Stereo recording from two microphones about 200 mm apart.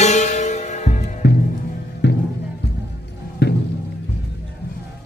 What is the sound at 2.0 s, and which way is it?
Music, 60° left (ahead or behind).